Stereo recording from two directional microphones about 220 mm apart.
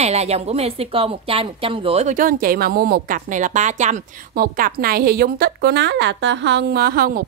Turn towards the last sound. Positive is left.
turn(degrees=-40)  # may be behind; listen again after turning